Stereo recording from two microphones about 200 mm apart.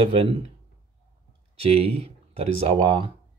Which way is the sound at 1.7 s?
30° right (ahead or behind).